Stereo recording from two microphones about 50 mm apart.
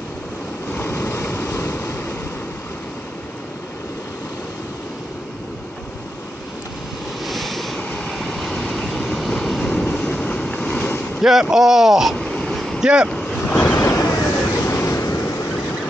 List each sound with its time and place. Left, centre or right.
0.8 s vehicle: left
7.2 s vehicle: centre
9.8 s vehicle: left
11.1 s speech: centre
12.2 s a sound: centre
12.8 s speech: centre
13.5 s vehicle: left
13.7 s waves: left
14.4 s vehicle: left